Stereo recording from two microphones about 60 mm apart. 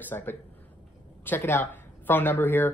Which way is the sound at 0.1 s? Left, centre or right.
Left.